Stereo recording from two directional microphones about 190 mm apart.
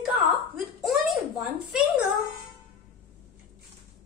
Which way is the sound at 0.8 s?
Centre (ahead or behind).